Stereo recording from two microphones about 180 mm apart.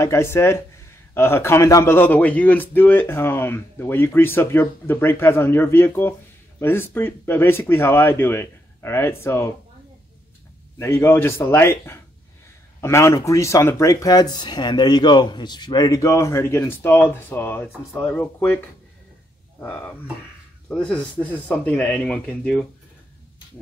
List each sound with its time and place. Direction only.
0.0 s speech: 15° left (ahead or behind)
10.8 s speech: 15° left (ahead or behind)
19.6 s speech: 5° left (ahead or behind)